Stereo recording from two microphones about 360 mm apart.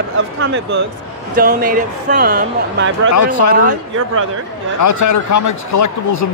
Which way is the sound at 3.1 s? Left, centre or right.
Left.